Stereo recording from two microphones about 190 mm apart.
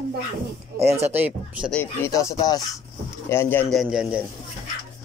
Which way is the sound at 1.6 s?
10° left (ahead or behind).